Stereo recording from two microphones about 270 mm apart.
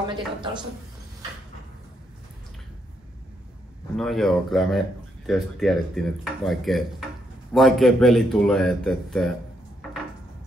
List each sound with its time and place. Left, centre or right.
0.1 s a woman's voice: centre
3.9 s speech: centre